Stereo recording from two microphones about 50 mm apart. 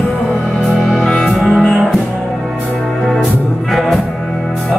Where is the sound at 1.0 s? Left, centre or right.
Centre.